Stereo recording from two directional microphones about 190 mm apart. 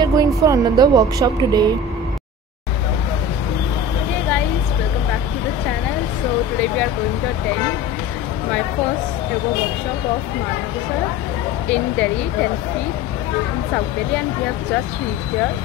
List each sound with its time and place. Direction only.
0.0 s speech: 20° right (ahead or behind)
11.6 s speech: 5° left (ahead or behind)